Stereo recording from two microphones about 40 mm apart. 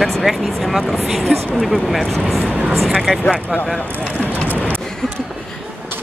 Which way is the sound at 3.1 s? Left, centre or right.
Centre.